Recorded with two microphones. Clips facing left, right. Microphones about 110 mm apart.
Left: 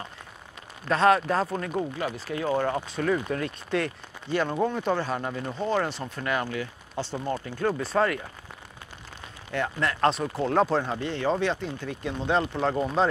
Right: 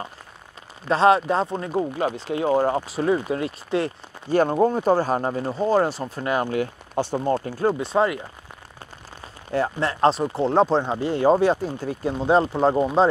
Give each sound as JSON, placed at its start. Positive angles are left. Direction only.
{"t": 0.8, "sound": "speech", "side_deg": -30}
{"t": 4.3, "sound": "speech", "side_deg": -40}
{"t": 7.9, "sound": "speech", "side_deg": -20}
{"t": 9.5, "sound": "speech", "side_deg": -35}
{"t": 11.1, "sound": "speech", "side_deg": -40}